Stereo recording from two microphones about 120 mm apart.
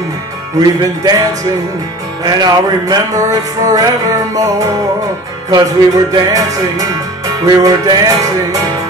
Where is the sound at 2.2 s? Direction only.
35° right (ahead or behind).